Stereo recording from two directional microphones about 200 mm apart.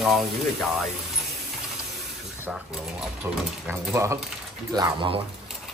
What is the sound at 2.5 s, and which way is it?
Speech, 5° right (ahead or behind).